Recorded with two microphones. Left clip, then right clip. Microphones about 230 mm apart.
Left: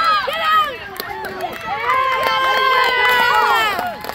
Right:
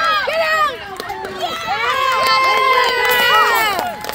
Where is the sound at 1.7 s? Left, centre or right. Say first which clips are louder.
Even; right.